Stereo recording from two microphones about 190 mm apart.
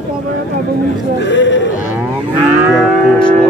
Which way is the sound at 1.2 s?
70° left (ahead or behind).